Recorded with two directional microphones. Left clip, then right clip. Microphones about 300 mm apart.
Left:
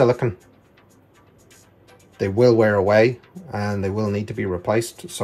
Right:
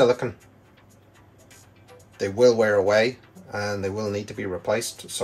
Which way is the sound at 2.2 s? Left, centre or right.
Left.